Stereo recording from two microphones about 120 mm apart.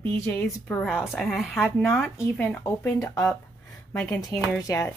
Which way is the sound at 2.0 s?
15° left (ahead or behind).